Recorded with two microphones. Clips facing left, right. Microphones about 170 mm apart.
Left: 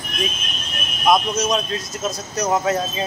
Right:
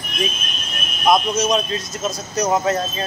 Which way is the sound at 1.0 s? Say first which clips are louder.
Right 1 dB; centre (ahead or behind).